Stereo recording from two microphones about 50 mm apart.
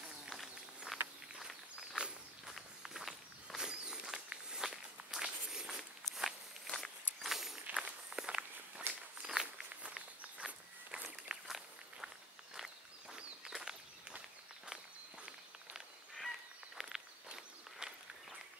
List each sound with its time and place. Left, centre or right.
0.3 s walk: centre
2.0 s walk: centre
2.8 s walk: centre
6.1 s walk: centre
7.7 s walk: centre
11.4 s walk: centre
13.1 s walk: centre
16.2 s a sound: centre
17.3 s walk: centre